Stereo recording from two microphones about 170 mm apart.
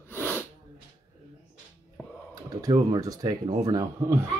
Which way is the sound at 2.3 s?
20° right (ahead or behind).